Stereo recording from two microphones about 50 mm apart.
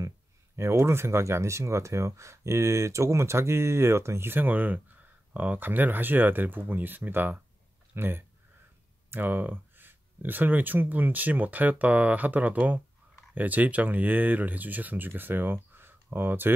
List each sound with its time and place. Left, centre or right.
0.6 s speech: right
4.3 s speech: right